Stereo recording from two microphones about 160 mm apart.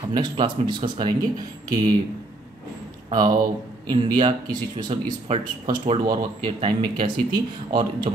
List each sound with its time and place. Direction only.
0.1 s speech: 30° right (ahead or behind)
3.1 s speech: 25° right (ahead or behind)